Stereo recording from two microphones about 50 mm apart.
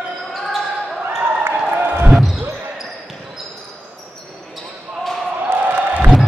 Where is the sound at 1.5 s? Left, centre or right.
Right.